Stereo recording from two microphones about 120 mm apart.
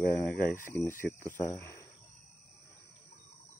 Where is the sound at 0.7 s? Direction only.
20° left (ahead or behind).